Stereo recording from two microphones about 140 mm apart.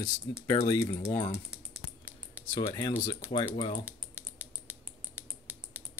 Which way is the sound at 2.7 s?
30° left (ahead or behind).